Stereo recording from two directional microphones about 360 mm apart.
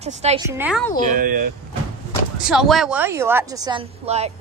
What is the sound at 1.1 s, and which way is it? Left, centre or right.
Speech, right.